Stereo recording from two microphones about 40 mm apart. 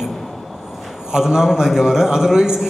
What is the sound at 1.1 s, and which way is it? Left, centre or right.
A man's voice, centre.